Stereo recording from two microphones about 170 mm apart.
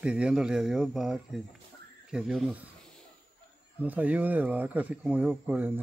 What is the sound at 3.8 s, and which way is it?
Speech, 10° right (ahead or behind).